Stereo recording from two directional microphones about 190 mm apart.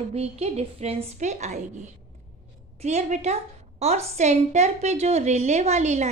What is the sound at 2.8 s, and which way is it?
A woman's voice, 35° right (ahead or behind).